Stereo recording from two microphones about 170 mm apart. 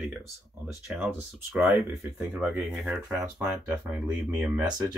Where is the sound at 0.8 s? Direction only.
Centre (ahead or behind).